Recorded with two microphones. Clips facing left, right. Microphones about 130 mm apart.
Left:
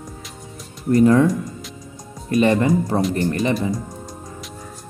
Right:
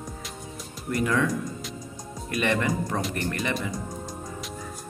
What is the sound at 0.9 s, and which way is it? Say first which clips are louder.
Speech: left 11 dB; 35° left (ahead or behind).